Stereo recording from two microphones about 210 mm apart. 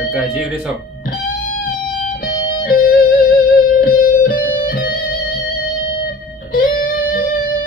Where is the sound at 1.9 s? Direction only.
45° left (ahead or behind).